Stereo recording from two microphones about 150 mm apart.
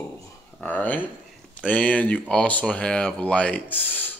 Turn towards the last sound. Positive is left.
turn(degrees=10)  # may be behind; listen again after turning